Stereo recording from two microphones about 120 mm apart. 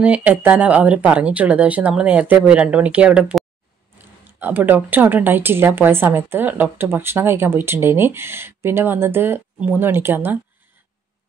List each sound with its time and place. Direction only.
0.0 s speech: 10° right (ahead or behind)